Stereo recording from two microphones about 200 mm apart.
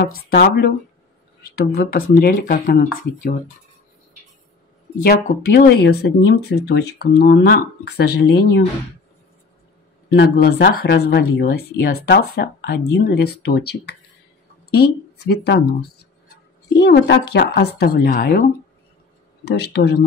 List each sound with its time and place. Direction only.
0.3 s speech: 50° left (ahead or behind)
5.0 s speech: 50° left (ahead or behind)
10.0 s a man's voice: 60° left (ahead or behind)
19.4 s speech: 55° left (ahead or behind)